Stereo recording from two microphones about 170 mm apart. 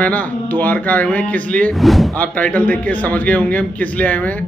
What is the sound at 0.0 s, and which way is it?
Speech, 10° left (ahead or behind).